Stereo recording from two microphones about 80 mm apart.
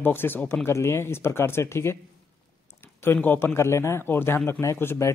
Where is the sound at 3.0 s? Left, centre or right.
Left.